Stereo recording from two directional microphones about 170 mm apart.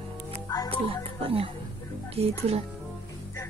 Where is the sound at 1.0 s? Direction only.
35° right (ahead or behind).